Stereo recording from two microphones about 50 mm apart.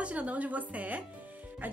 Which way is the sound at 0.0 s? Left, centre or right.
Right.